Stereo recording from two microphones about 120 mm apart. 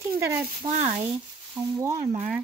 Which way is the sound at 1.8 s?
25° right (ahead or behind).